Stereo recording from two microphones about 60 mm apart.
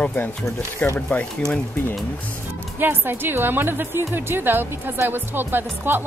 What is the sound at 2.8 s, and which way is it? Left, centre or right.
Speech, right.